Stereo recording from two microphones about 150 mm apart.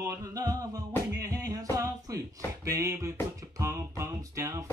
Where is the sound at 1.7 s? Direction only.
20° right (ahead or behind).